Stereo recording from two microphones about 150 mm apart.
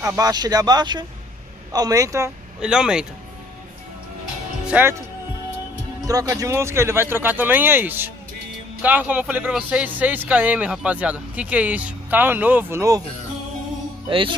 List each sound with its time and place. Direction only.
0.0 s speech: 20° right (ahead or behind)
2.6 s speech: 5° right (ahead or behind)
4.6 s speech: 10° right (ahead or behind)
6.0 s a man's voice: 25° right (ahead or behind)
14.0 s music: 35° right (ahead or behind)